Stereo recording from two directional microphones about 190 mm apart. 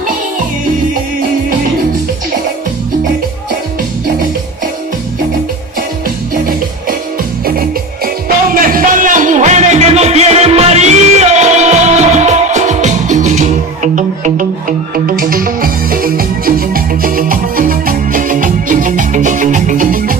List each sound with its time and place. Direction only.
7.4 s music: 50° right (ahead or behind)